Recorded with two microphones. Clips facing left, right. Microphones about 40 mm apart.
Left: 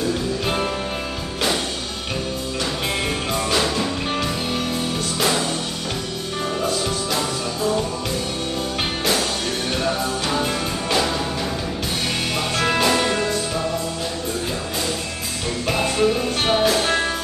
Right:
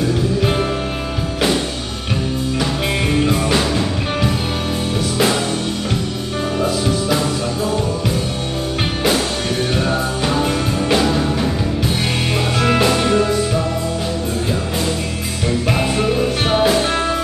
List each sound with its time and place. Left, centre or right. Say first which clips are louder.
3.1 s music: right 6 dB; centre
9.8 s music: right 3 dB; centre
12.5 s music: right 3 dB; centre
15.7 s music: left 1 dB; centre